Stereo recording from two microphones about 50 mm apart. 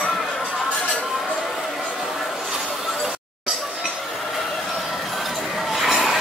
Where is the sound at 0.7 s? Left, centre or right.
Centre.